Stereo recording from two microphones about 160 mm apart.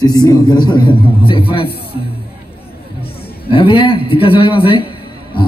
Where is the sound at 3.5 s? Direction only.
35° left (ahead or behind).